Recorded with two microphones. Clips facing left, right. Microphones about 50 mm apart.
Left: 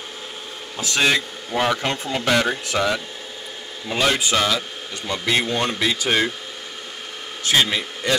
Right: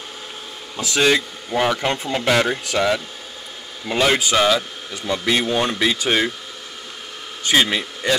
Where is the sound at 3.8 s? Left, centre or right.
Centre.